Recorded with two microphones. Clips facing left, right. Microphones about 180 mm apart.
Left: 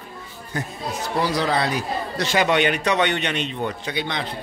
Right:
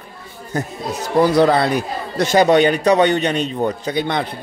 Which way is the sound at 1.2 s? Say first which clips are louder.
Right 9 dB; 50° right (ahead or behind).